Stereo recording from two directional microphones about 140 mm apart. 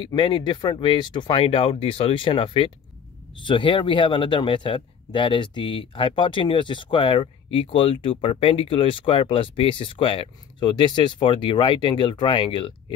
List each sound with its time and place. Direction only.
0.0 s speech: 35° left (ahead or behind)